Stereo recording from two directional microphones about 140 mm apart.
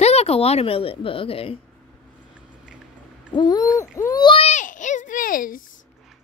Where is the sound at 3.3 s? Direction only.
30° left (ahead or behind).